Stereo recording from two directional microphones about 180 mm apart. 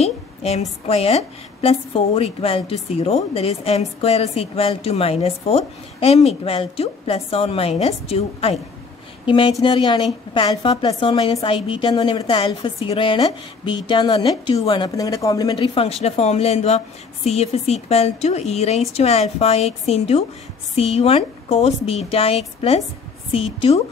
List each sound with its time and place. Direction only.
0.0 s a woman's voice: 35° left (ahead or behind)